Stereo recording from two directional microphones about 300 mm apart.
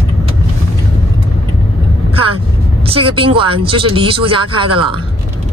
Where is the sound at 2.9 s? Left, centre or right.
Centre.